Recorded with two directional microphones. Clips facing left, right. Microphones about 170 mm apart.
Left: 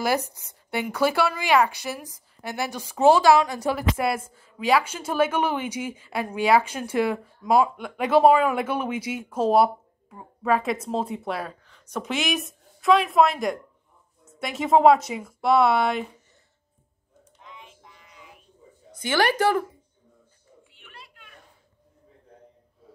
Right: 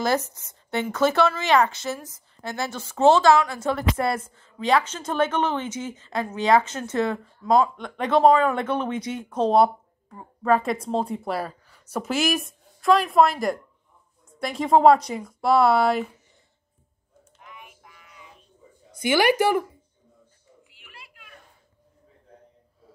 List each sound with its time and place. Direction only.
0.0 s a woman's voice: 10° left (ahead or behind)
17.5 s child singing: 25° left (ahead or behind)
18.9 s speech: 10° right (ahead or behind)